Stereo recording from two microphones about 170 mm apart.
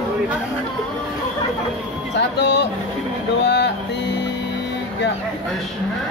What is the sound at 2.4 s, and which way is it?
Speech, 90° left.